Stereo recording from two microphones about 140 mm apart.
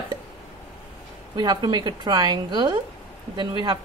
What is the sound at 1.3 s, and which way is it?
A woman's voice, 30° right (ahead or behind).